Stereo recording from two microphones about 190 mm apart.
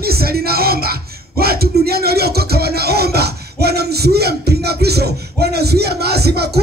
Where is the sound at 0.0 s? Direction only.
55° right (ahead or behind).